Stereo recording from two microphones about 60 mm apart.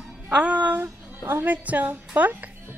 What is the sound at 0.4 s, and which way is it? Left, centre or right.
Speech, right.